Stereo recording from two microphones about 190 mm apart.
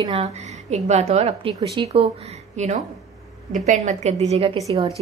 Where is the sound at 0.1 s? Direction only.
35° right (ahead or behind).